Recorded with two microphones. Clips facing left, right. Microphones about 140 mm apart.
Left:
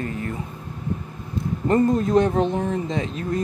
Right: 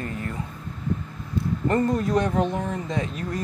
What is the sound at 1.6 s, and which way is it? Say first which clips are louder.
Speech: left 4 dB; 20° left (ahead or behind).